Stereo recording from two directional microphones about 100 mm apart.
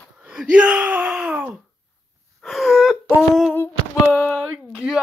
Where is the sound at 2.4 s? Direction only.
Centre (ahead or behind).